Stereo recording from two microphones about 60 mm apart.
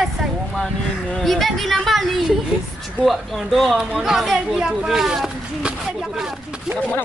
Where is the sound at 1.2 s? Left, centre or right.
Centre.